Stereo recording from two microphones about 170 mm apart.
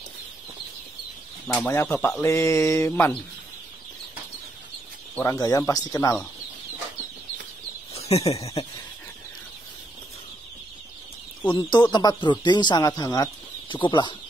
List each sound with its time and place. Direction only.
1.5 s mantra: 10° left (ahead or behind)
5.1 s speech: 15° left (ahead or behind)
7.9 s speech: 35° left (ahead or behind)
11.5 s speech: 25° left (ahead or behind)